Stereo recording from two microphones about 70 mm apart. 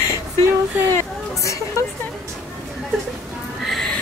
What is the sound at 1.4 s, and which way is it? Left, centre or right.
Speech, left.